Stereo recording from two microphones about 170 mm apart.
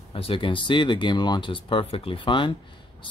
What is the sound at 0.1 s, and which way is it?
Speech, 30° left (ahead or behind).